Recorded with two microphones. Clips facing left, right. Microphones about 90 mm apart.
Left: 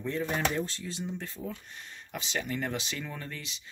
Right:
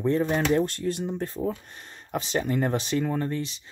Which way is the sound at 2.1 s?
40° right (ahead or behind).